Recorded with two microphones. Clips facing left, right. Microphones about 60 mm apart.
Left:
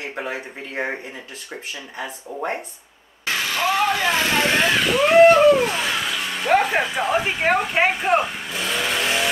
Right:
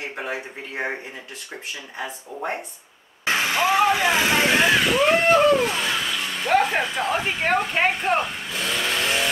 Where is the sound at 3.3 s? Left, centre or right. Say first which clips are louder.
Right 2 dB; right.